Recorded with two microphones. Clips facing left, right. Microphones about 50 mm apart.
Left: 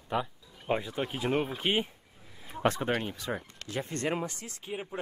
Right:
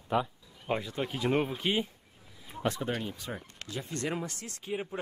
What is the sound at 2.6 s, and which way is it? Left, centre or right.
Speech, left.